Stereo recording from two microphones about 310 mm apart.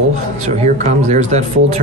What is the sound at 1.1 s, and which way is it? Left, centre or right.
Speech, right.